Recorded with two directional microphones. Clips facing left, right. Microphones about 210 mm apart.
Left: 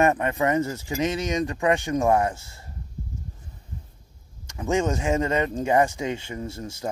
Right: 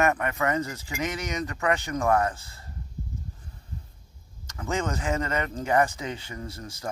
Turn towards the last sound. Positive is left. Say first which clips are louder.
# left 5 dB
turn(degrees=25)  # may be behind; listen again after turning